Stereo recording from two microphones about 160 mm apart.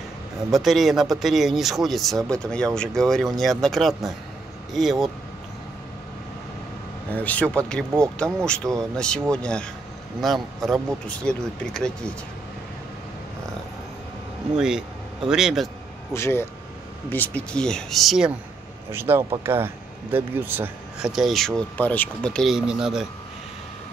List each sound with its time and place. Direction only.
0.5 s speech: centre (ahead or behind)
7.2 s speech: 10° left (ahead or behind)
14.6 s speech: 5° right (ahead or behind)
16.1 s speech: 15° left (ahead or behind); by 18.3 s centre (ahead or behind)
18.9 s speech: 15° right (ahead or behind)